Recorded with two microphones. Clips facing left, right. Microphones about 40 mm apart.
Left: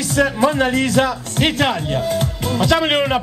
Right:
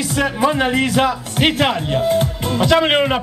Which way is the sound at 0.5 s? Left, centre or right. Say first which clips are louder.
Even; right.